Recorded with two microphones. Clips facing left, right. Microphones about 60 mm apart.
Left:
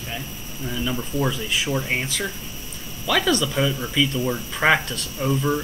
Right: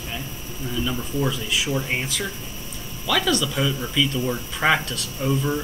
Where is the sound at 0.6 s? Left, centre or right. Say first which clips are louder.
Even; centre.